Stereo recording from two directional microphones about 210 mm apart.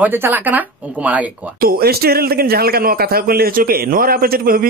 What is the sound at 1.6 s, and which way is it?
Speech, 45° right (ahead or behind).